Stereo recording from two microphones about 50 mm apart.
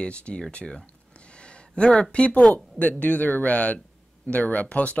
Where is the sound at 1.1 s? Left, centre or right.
Left.